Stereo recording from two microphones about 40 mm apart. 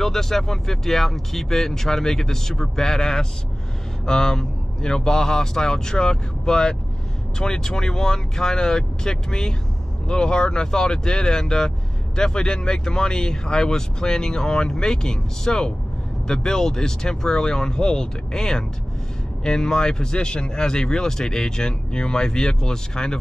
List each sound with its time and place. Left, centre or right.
0.0 s speech: centre